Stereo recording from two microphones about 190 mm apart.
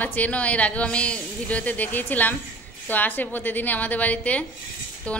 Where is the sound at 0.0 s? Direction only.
10° left (ahead or behind).